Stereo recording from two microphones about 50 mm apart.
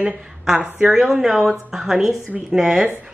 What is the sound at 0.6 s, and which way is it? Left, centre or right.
Speech, right.